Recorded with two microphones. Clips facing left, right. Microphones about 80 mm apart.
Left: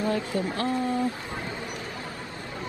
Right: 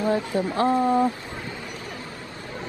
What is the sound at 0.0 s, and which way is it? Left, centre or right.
Speech, right.